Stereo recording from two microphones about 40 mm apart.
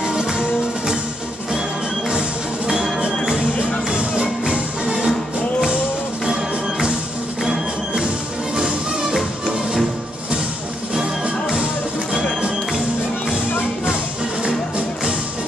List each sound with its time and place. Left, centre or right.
0.0 s music: right
2.0 s music: right
12.1 s music: right